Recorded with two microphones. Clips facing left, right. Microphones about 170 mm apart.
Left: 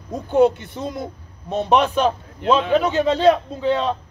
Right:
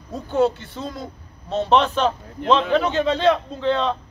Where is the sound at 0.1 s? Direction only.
15° left (ahead or behind).